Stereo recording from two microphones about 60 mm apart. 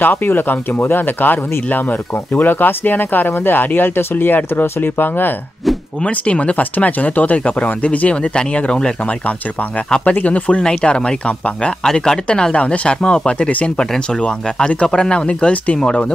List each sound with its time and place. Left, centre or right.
0.0 s speech: left
6.0 s speech: centre